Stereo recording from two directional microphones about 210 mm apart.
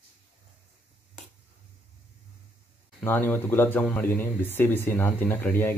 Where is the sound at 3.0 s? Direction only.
10° left (ahead or behind).